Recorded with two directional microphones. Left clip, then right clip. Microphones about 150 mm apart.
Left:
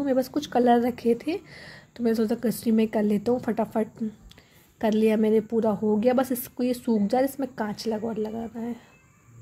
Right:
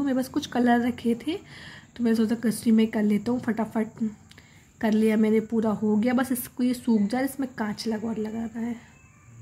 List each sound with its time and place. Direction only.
0.0 s speech: 20° left (ahead or behind)